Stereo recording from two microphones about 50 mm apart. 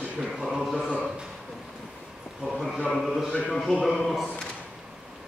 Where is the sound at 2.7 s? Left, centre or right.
Centre.